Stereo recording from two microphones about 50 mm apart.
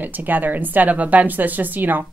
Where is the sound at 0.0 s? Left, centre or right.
Right.